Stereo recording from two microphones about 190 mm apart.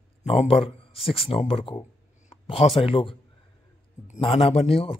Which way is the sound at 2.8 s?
30° left (ahead or behind).